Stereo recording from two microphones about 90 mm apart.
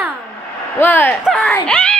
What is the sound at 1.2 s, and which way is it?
Speech, centre (ahead or behind).